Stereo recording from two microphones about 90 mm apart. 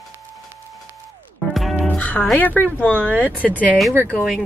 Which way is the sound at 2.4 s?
20° left (ahead or behind).